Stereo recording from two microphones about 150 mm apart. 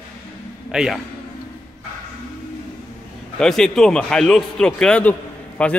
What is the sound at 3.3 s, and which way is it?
Speech, 5° left (ahead or behind).